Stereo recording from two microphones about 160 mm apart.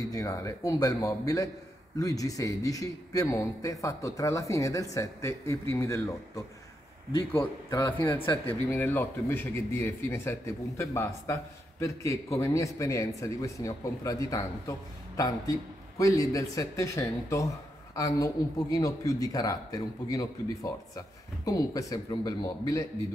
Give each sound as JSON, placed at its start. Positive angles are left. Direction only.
{"t": 0.0, "sound": "a man's voice", "side_deg": 20}